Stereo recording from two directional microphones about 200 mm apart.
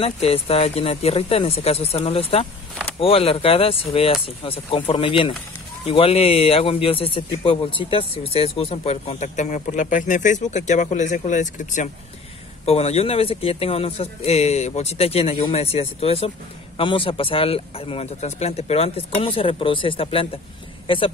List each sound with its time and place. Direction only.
0.0 s speech: 30° left (ahead or behind)